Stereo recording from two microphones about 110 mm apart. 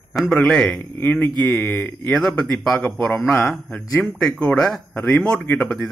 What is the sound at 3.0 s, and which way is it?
Speech, 10° left (ahead or behind).